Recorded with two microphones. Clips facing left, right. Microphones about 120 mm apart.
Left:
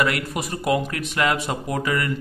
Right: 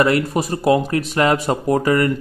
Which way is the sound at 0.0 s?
35° right (ahead or behind).